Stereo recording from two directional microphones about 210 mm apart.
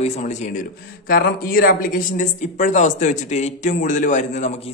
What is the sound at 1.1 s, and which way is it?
A man's voice, 45° left (ahead or behind).